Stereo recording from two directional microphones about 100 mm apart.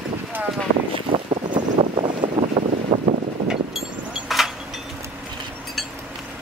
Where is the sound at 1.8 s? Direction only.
70° right (ahead or behind).